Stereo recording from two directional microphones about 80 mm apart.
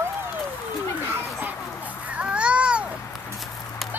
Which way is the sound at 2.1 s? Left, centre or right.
Centre.